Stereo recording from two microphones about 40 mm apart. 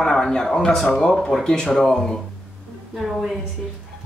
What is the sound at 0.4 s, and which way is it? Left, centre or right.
Speech, centre.